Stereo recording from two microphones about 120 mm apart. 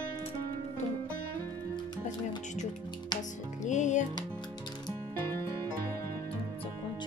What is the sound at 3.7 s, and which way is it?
Music, 85° left.